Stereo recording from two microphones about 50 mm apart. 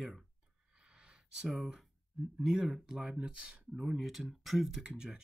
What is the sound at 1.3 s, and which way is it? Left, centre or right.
Speech, centre.